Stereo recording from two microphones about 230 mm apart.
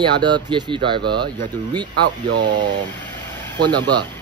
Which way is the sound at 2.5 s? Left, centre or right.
Centre.